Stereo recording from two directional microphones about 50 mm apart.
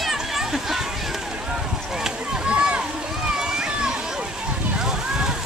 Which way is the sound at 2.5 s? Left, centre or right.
Right.